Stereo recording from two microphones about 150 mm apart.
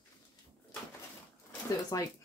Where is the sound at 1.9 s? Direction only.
25° left (ahead or behind).